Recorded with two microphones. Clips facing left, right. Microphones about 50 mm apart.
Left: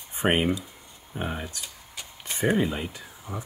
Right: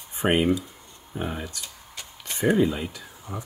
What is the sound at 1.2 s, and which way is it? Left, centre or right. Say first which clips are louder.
Speech: right 1 dB; centre.